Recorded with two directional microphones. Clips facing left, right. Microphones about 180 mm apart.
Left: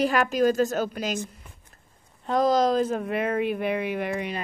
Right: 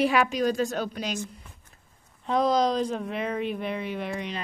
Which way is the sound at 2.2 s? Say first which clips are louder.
Left 2 dB; centre (ahead or behind).